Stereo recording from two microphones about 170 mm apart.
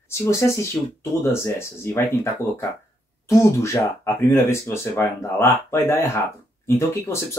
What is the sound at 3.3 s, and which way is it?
Speech, 15° left (ahead or behind).